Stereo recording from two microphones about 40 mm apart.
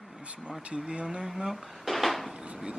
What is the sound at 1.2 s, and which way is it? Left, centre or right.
Dishes, centre.